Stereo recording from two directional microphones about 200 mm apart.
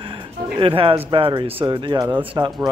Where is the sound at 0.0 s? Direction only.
25° right (ahead or behind).